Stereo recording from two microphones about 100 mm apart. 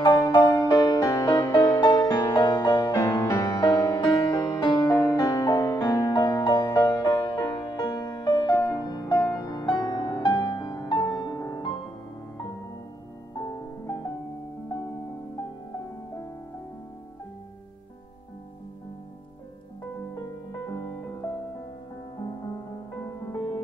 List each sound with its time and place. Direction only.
0.0 s music: 45° left (ahead or behind)
11.3 s music: 30° left (ahead or behind)
13.3 s music: 35° left (ahead or behind)
20.2 s music: 35° left (ahead or behind)
23.0 s music: 30° left (ahead or behind)